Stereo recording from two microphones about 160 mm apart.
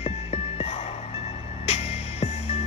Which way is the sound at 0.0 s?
40° left (ahead or behind).